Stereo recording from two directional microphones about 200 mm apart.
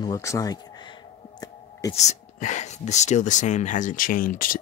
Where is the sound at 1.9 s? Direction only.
35° left (ahead or behind).